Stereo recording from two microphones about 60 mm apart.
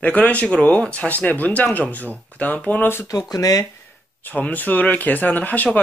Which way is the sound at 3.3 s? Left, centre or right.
Left.